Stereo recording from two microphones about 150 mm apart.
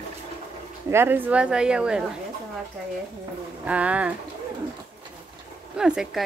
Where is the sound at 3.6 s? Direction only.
10° right (ahead or behind).